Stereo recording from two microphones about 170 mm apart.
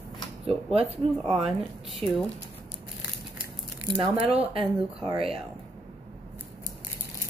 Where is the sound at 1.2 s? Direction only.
Centre (ahead or behind).